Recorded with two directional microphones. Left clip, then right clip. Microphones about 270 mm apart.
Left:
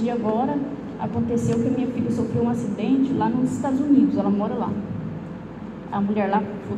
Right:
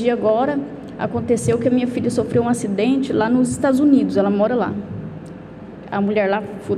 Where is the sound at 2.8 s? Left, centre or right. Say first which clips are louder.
Right 4 dB; right.